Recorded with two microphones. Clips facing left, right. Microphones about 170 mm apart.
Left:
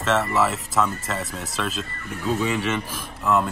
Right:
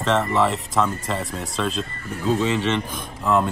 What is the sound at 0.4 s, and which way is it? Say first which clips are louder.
Speech: right 2 dB; centre (ahead or behind).